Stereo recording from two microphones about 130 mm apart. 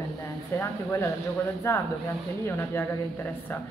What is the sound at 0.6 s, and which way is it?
Speech, 25° left (ahead or behind).